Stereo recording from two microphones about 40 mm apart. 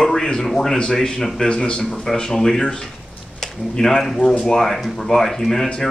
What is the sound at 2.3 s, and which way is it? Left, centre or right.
Speech, centre.